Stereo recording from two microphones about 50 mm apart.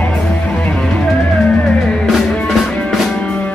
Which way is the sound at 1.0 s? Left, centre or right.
Left.